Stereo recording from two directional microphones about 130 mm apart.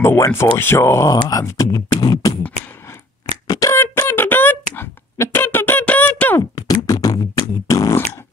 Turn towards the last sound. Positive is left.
turn(degrees=25)  # may be behind; listen again after turning